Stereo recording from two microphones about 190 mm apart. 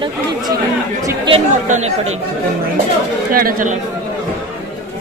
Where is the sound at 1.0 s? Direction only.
25° right (ahead or behind).